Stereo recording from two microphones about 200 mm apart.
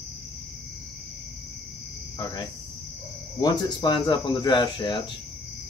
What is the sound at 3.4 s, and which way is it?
Speech, 20° left (ahead or behind).